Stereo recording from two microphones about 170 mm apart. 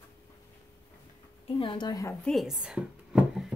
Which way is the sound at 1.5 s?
30° left (ahead or behind).